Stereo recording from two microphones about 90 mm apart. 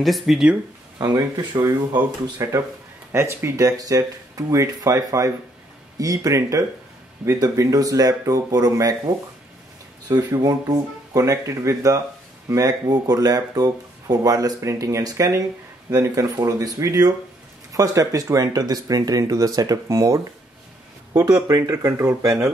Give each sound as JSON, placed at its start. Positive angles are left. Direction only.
{"t": 0.0, "sound": "speech", "side_deg": 0}
{"t": 0.9, "sound": "speech", "side_deg": -45}
{"t": 2.4, "sound": "speech", "side_deg": -35}
{"t": 21.1, "sound": "speech", "side_deg": -45}
{"t": 21.7, "sound": "speech", "side_deg": -30}